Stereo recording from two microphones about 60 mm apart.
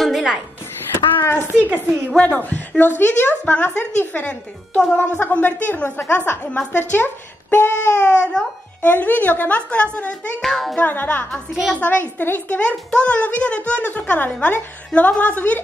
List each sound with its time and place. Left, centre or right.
0.0 s a sound: centre
0.9 s a sound: left
2.1 s a woman's voice: left
8.0 s speech: centre
8.8 s a woman's voice: left
10.4 s music: centre
10.8 s a woman's voice: left
11.6 s speech: centre
12.2 s a woman's voice: left
12.5 s a woman's voice: centre